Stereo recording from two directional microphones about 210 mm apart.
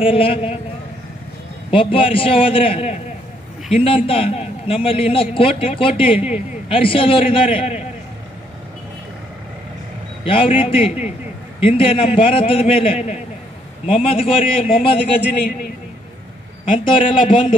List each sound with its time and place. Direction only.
0.0 s a man's voice: 25° left (ahead or behind)
1.7 s a man's voice: 25° left (ahead or behind)
10.2 s a man's voice: 25° left (ahead or behind)
14.0 s a man's voice: 25° left (ahead or behind)
15.1 s a man's voice: 50° left (ahead or behind)
16.6 s a man's voice: 25° left (ahead or behind)